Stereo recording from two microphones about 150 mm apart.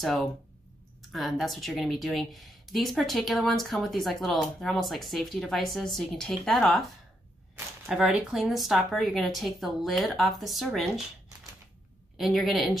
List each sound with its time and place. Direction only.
0.0 s a woman's voice: centre (ahead or behind)
7.9 s a woman's voice: 5° right (ahead or behind)
12.2 s a woman's voice: centre (ahead or behind)